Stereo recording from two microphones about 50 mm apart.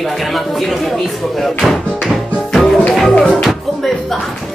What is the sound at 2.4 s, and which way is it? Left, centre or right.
Music, centre.